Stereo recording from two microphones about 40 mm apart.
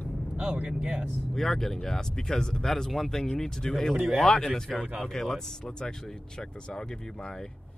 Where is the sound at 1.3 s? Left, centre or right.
Centre.